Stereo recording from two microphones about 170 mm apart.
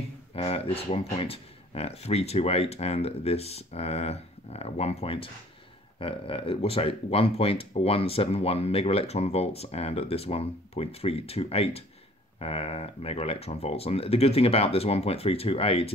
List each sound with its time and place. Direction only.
0.3 s speech: 40° left (ahead or behind)